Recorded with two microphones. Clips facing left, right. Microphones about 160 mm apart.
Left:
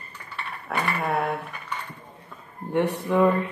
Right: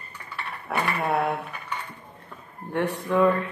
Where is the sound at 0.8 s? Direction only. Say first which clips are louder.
Right 1 dB; 65° right (ahead or behind).